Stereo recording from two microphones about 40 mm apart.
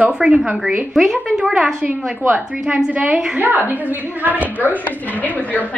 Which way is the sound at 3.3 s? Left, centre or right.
Right.